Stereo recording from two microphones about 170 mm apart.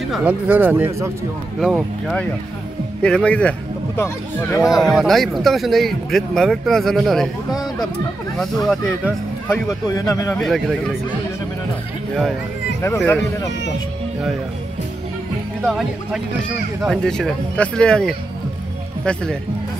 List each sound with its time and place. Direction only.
0.1 s speech: 10° right (ahead or behind)
1.6 s speech: centre (ahead or behind)
4.6 s speech: centre (ahead or behind)
8.6 s speech: 5° right (ahead or behind)
9.7 s a man's voice: 20° left (ahead or behind)
10.4 s speech: centre (ahead or behind)
12.8 s speech: 10° left (ahead or behind)
15.6 s speech: centre (ahead or behind)